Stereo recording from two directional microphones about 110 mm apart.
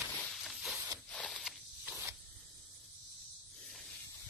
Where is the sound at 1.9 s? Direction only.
20° right (ahead or behind).